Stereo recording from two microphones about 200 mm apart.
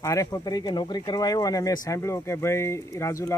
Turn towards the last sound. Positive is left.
turn(degrees=15)  # may be behind; listen again after turning